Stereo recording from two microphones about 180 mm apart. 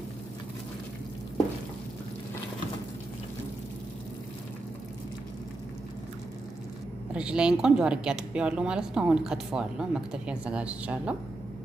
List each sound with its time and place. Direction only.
7.2 s speech: 5° right (ahead or behind)